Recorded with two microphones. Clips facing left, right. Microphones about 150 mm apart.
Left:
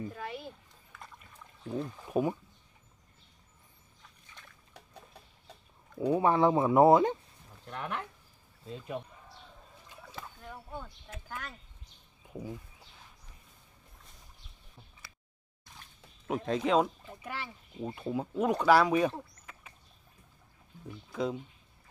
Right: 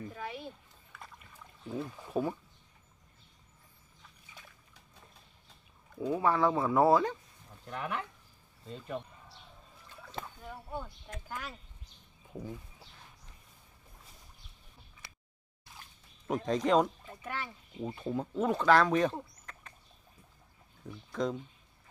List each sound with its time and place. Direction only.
0.1 s speech: centre (ahead or behind)
0.9 s a sound: centre (ahead or behind)
2.0 s speech: 15° left (ahead or behind)
6.1 s speech: 20° left (ahead or behind)
7.6 s speech: centre (ahead or behind)
10.4 s speech: 5° right (ahead or behind)
16.3 s speech: 5° left (ahead or behind)
19.5 s bird: 5° left (ahead or behind)
21.1 s speech: 5° left (ahead or behind)